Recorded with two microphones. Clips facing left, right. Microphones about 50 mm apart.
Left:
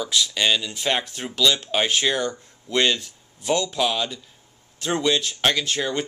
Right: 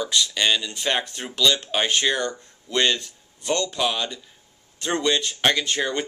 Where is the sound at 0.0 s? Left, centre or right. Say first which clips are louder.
Even; centre.